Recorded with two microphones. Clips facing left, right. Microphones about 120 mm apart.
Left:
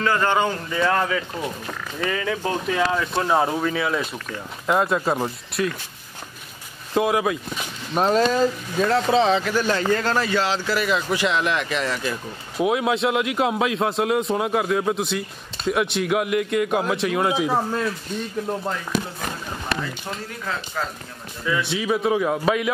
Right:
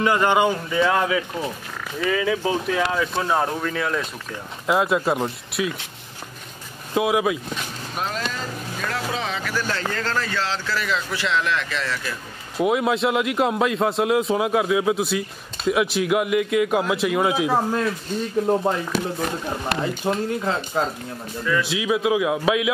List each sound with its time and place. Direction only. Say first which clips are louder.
0.0 s a man's voice: right 2 dB; 15° right (ahead or behind)
6.9 s a man's voice: even; centre (ahead or behind)
7.9 s speech: left 10 dB; 35° left (ahead or behind)
8.9 s speech: left 10 dB; 25° left (ahead or behind)
12.5 s a man's voice: right 1 dB; centre (ahead or behind)
18.5 s speech: right 7 dB; 25° right (ahead or behind)
20.2 s speech: right 6 dB; 30° right (ahead or behind)
21.5 s a man's voice: right 1 dB; centre (ahead or behind)